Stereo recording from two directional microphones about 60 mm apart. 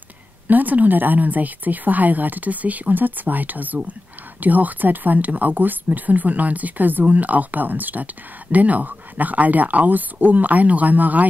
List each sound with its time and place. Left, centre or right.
0.5 s speech: right